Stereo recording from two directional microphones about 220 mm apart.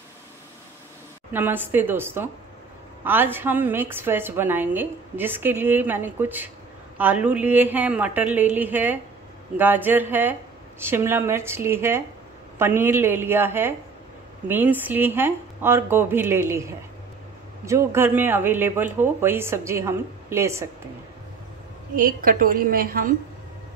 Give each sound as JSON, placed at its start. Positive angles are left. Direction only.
{"t": 1.3, "sound": "a woman's voice", "side_deg": -10}
{"t": 21.9, "sound": "a woman's voice", "side_deg": -40}